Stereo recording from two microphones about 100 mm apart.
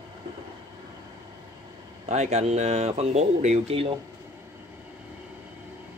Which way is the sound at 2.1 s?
90° right.